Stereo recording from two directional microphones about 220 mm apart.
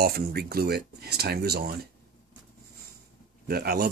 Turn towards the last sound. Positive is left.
turn(degrees=-45)  # may be behind; listen again after turning